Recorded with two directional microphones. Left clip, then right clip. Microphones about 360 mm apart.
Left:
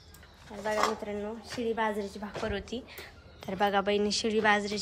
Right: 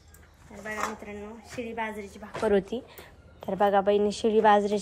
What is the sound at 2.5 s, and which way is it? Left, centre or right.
A woman's voice, centre.